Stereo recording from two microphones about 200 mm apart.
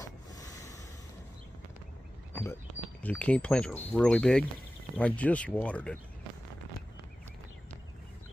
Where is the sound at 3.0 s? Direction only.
5° left (ahead or behind).